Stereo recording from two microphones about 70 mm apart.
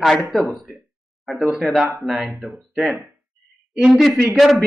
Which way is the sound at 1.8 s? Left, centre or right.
Centre.